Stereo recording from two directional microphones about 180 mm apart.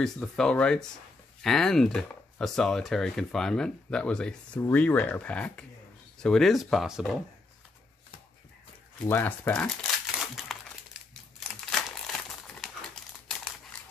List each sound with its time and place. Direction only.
0.0 s speech: 5° left (ahead or behind)
9.0 s speech: 15° left (ahead or behind)
10.2 s crumpling: centre (ahead or behind)